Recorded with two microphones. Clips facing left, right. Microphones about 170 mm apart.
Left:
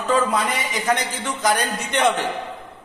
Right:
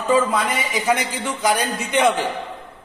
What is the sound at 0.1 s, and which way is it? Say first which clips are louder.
A man's voice: right 2 dB; 5° right (ahead or behind).